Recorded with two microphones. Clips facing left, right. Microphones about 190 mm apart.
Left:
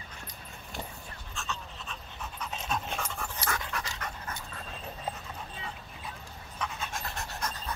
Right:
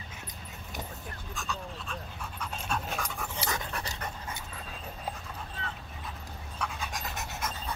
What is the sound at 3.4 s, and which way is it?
Dog, 25° right (ahead or behind).